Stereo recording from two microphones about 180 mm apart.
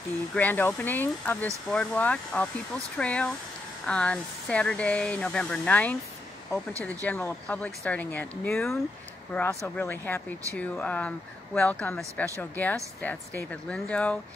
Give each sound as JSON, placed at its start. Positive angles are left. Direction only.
{"t": 0.3, "sound": "speech", "side_deg": 10}